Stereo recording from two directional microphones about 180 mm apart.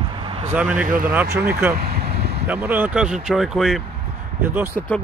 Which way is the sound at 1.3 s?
10° right (ahead or behind).